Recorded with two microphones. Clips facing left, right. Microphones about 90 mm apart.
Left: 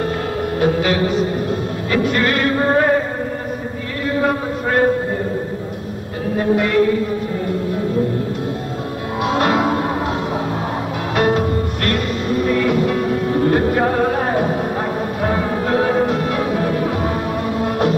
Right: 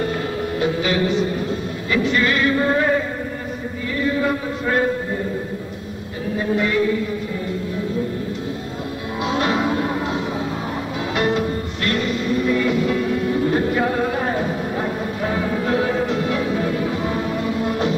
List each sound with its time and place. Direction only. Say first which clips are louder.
0.6 s music: left 3 dB; 45° left (ahead or behind)
2.5 s music: left 3 dB; 40° left (ahead or behind)
4.0 s a sound: left 2 dB; 55° left (ahead or behind)
6.3 s music: left 4 dB; 50° left (ahead or behind)
9.2 s music: left 4 dB; 50° left (ahead or behind)
11.1 s music: left 4 dB; 50° left (ahead or behind)